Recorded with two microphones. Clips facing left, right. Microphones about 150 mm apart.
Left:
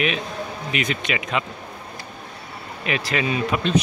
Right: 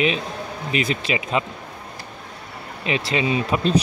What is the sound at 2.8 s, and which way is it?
Speech, 25° right (ahead or behind).